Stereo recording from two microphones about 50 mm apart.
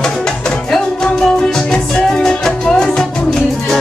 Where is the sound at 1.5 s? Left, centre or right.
Centre.